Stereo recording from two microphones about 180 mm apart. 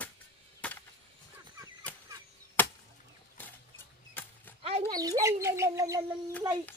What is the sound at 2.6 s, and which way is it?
Chop, 10° left (ahead or behind).